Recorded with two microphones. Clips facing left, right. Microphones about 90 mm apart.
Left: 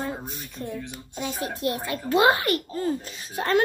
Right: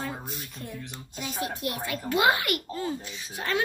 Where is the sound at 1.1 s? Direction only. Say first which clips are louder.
Left 2 dB; 35° left (ahead or behind).